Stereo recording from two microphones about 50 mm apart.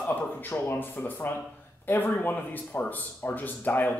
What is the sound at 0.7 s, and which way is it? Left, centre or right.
Speech, left.